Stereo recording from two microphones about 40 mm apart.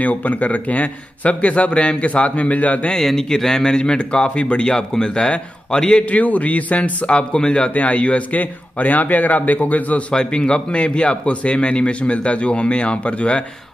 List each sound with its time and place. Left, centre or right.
0.0 s a man's voice: left
2.9 s a man's voice: centre
6.0 s a man's voice: left
7.7 s a man's voice: left
8.4 s a man's voice: left
10.1 s a man's voice: left